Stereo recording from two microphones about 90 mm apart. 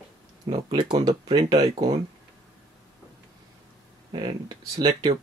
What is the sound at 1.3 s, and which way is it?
Speech, 50° right (ahead or behind).